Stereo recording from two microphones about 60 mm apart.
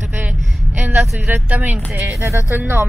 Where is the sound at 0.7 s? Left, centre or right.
Right.